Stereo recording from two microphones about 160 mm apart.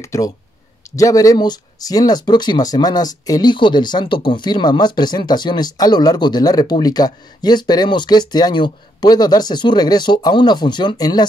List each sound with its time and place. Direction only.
0.0 s speech: 20° left (ahead or behind)